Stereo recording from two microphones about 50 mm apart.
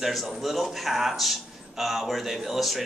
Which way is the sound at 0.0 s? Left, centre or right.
Centre.